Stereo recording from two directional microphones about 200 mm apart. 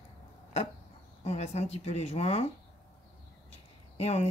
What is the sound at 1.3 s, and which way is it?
Speech, 30° left (ahead or behind).